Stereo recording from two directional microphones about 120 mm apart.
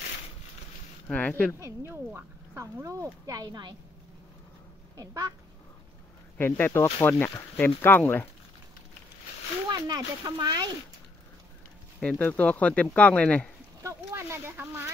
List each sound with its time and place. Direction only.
1.0 s speech: 15° left (ahead or behind)
1.6 s speech: 20° right (ahead or behind)
4.9 s speech: 30° right (ahead or behind)
6.3 s speech: 15° left (ahead or behind)
9.7 s speech: 35° right (ahead or behind)
12.0 s speech: 10° left (ahead or behind)
13.8 s speech: 20° right (ahead or behind)